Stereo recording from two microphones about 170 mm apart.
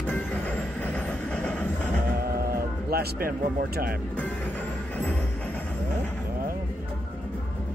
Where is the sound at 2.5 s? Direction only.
65° right (ahead or behind).